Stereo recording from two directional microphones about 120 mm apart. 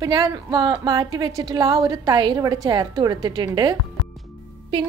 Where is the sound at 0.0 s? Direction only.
40° right (ahead or behind).